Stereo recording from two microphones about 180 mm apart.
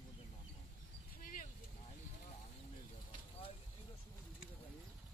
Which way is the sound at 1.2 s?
50° left (ahead or behind).